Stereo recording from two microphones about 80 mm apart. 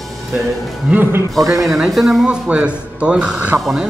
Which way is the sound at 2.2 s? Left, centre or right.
Centre.